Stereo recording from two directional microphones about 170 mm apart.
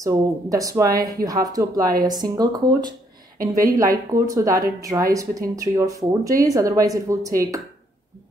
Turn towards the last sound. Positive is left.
turn(degrees=-20)  # may be behind; listen again after turning